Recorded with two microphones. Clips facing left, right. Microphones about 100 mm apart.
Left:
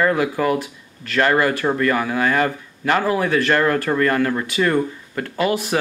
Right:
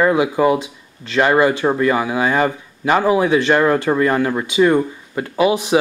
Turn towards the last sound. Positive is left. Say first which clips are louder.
# right 4 dB
turn(degrees=-15)  # may be behind; listen again after turning